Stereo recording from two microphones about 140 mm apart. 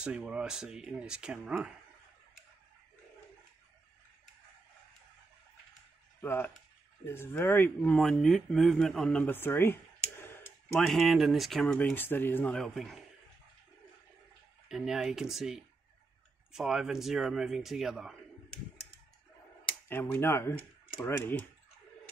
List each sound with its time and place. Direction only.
0.0 s speech: 5° right (ahead or behind)
6.2 s speech: 15° left (ahead or behind)
10.8 s speech: centre (ahead or behind)
11.6 s speech: 10° left (ahead or behind)
14.7 s speech: 5° right (ahead or behind)
19.9 s speech: 15° left (ahead or behind)